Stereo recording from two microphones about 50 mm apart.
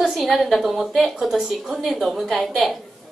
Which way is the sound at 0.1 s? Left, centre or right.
Centre.